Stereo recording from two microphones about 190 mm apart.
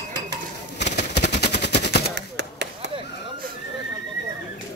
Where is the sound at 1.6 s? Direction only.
60° left (ahead or behind).